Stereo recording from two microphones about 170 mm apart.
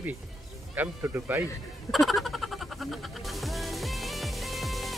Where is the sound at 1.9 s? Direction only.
Centre (ahead or behind).